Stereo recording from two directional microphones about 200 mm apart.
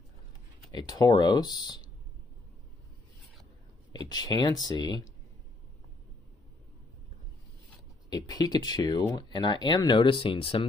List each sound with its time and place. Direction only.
0.7 s speech: 20° left (ahead or behind)
3.9 s speech: 20° left (ahead or behind)
8.1 s speech: 20° left (ahead or behind)